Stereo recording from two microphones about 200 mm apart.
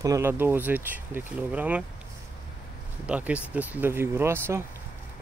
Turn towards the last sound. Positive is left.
turn(degrees=-10)  # may be behind; listen again after turning